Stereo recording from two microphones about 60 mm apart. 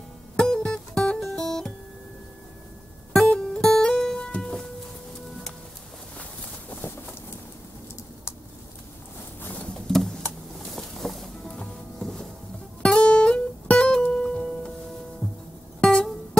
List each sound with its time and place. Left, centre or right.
0.4 s music: centre
1.2 s guitar: centre
3.1 s music: centre
6.8 s a sound: left
9.8 s a sound: centre
10.6 s music: centre
15.8 s music: centre